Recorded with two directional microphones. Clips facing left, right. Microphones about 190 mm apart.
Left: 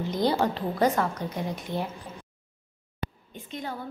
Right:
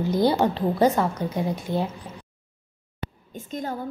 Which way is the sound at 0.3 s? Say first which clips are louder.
Right 4 dB; 30° right (ahead or behind).